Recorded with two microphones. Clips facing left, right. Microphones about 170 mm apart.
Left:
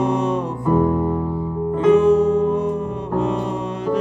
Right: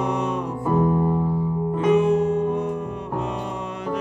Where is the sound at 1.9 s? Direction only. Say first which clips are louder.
Left 4 dB; 35° left (ahead or behind).